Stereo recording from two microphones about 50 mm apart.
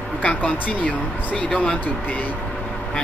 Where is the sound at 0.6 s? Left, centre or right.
Left.